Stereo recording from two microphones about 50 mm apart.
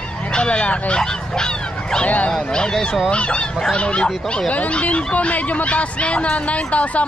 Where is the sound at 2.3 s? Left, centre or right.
Centre.